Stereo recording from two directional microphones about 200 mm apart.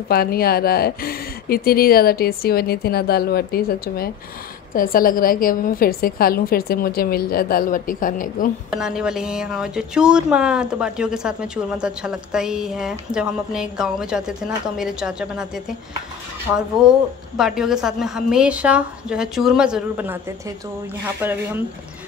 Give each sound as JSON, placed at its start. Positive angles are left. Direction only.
{"t": 0.1, "sound": "speech", "side_deg": 50}
{"t": 8.6, "sound": "speech", "side_deg": -5}
{"t": 17.4, "sound": "speech", "side_deg": -5}